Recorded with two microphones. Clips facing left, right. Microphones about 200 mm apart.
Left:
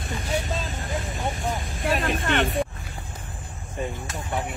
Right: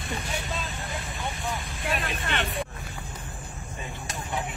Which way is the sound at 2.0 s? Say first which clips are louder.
Left 7 dB; 45° left (ahead or behind).